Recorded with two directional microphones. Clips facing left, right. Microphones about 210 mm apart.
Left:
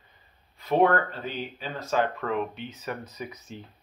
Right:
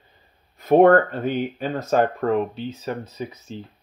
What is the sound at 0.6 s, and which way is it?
Speech, 50° right (ahead or behind).